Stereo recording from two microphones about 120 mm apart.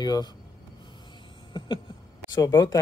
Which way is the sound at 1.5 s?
40° left (ahead or behind).